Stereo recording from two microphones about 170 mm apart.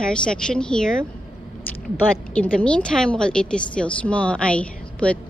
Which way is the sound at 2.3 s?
5° left (ahead or behind).